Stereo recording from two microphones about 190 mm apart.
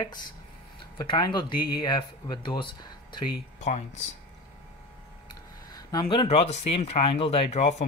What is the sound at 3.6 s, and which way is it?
Speech, 35° left (ahead or behind).